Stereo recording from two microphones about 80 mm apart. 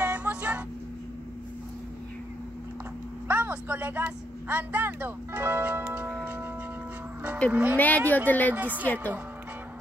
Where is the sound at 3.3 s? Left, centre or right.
Right.